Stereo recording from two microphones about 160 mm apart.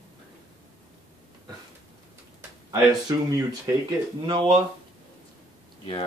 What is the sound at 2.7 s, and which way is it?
Speech, 25° right (ahead or behind).